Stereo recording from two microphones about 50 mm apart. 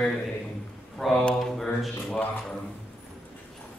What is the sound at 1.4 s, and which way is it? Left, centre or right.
Mantra, centre.